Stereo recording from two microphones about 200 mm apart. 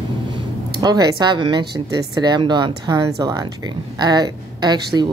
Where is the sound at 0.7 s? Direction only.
20° right (ahead or behind).